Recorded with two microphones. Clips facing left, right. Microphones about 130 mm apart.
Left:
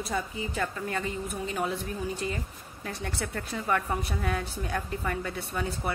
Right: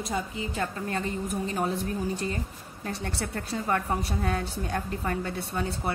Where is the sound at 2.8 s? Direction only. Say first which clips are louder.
Right 2 dB; 35° right (ahead or behind).